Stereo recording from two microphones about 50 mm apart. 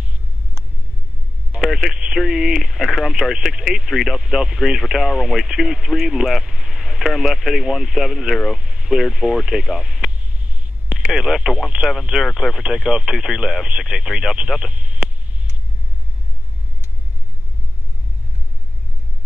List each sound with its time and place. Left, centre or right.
1.6 s speech: centre
10.4 s a sound: right
11.1 s speech: centre